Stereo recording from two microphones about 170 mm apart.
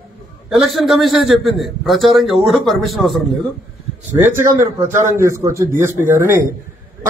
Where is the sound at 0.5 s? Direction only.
Centre (ahead or behind).